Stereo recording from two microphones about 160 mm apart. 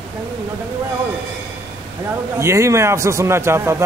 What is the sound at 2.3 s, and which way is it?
A man's voice, 20° right (ahead or behind).